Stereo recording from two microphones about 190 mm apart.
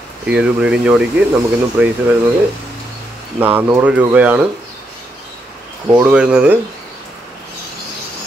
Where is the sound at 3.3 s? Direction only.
10° right (ahead or behind).